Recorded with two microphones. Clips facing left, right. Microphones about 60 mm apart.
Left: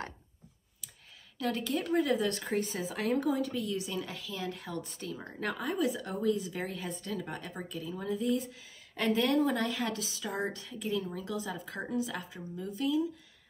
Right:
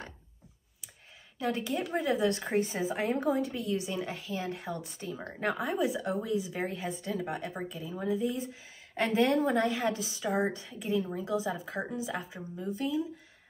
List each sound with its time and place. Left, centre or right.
1.4 s speech: right